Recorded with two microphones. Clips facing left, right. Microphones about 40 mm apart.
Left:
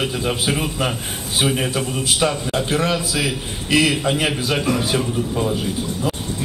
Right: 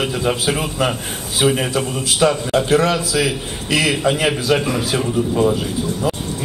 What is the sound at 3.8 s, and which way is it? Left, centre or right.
Speech, right.